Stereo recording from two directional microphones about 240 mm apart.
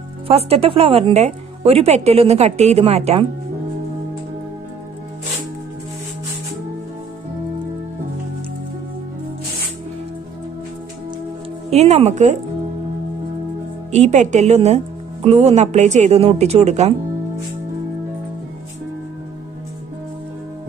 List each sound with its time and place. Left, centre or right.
0.3 s a woman's voice: right
11.7 s a woman's voice: right
13.9 s a woman's voice: right